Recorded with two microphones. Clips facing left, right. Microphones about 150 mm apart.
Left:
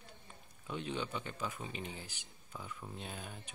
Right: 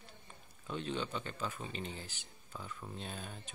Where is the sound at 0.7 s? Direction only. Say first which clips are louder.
Right 1 dB; 10° left (ahead or behind).